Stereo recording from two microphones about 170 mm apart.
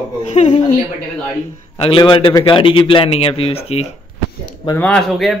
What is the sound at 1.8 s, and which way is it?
A man's voice, 30° left (ahead or behind).